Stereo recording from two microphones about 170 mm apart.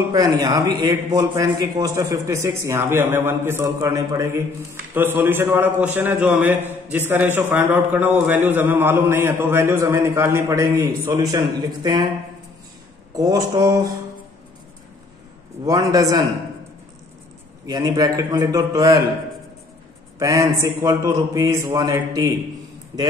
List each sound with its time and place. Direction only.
0.1 s a man's voice: 20° right (ahead or behind)
13.1 s a man's voice: 20° right (ahead or behind)
15.6 s a man's voice: 20° right (ahead or behind)
17.6 s a man's voice: 20° right (ahead or behind)
20.2 s a man's voice: 20° right (ahead or behind)